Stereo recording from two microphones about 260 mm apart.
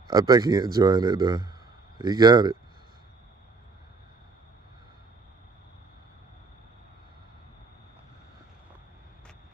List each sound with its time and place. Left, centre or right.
0.1 s speech: centre